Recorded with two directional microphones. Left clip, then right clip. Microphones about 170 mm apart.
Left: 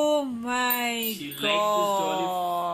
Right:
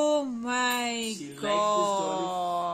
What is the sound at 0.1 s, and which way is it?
Music, 5° right (ahead or behind).